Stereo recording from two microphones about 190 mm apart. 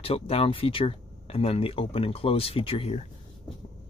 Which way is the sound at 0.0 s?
30° left (ahead or behind).